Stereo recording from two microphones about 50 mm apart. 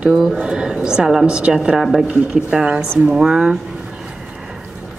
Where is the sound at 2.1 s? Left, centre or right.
Centre.